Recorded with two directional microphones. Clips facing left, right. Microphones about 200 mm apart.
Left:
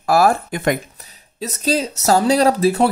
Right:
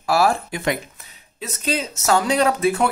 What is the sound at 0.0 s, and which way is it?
Speech, 50° left (ahead or behind).